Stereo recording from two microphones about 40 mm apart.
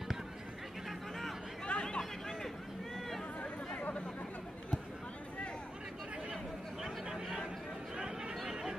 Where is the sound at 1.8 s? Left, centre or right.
Centre.